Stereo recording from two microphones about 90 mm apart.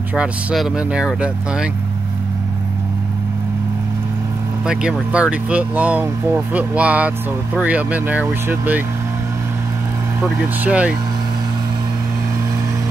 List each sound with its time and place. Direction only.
0.1 s speech: 10° right (ahead or behind)
5.1 s speech: 15° right (ahead or behind)
10.6 s speech: 15° right (ahead or behind)